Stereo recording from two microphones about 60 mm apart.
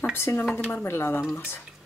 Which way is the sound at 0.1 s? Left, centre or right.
Left.